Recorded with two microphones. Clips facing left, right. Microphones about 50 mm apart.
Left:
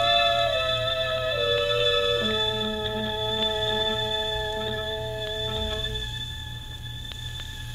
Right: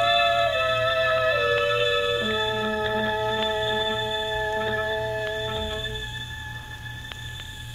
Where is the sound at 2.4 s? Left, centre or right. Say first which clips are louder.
Right 2 dB; right.